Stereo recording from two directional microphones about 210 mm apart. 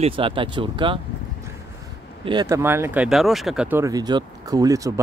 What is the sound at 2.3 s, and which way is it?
Speech, 20° right (ahead or behind).